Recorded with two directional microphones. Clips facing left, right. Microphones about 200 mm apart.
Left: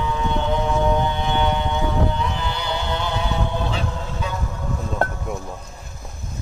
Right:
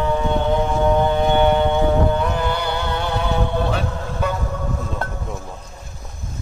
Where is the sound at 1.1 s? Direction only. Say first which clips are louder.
Right 6 dB; 50° right (ahead or behind).